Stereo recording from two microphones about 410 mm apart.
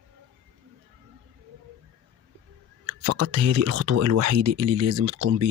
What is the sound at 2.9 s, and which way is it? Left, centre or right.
Speech, right.